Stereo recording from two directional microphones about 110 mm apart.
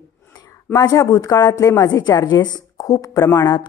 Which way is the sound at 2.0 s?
40° left (ahead or behind).